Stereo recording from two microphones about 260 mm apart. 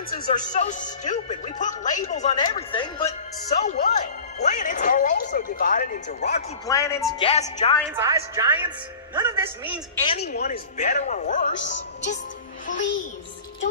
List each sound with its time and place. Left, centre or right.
0.3 s speech: left
6.7 s a woman's voice: centre
7.2 s speech: left
7.9 s a woman's voice: centre
10.0 s speech: left
11.5 s a woman's voice: left